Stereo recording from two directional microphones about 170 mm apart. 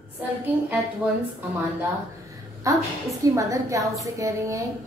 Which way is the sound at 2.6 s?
20° right (ahead or behind).